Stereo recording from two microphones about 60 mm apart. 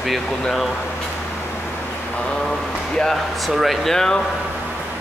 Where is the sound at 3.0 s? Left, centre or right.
Centre.